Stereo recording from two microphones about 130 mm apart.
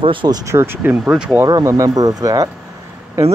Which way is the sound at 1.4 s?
25° right (ahead or behind).